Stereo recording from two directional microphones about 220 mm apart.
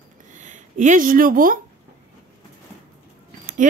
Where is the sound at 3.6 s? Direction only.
35° right (ahead or behind).